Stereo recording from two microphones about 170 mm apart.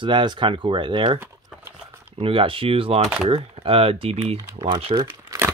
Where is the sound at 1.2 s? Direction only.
10° right (ahead or behind).